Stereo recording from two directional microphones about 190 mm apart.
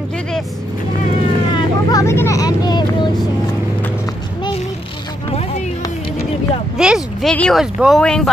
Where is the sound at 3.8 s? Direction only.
20° left (ahead or behind).